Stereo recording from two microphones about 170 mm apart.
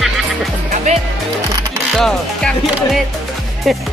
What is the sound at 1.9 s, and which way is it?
Speech, centre (ahead or behind).